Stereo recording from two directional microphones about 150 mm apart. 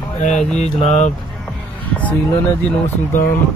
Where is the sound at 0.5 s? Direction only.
45° left (ahead or behind).